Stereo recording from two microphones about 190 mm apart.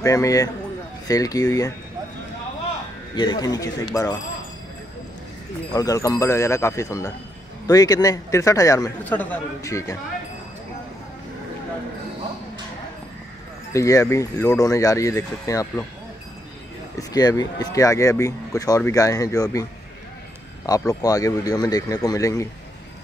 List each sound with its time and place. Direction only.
0.0 s a man's voice: 15° left (ahead or behind)
3.2 s speech: 20° left (ahead or behind)
5.7 s a man's voice: 20° left (ahead or behind)
13.7 s a man's voice: 15° left (ahead or behind)
17.1 s a man's voice: 20° left (ahead or behind)
20.6 s a man's voice: 20° left (ahead or behind)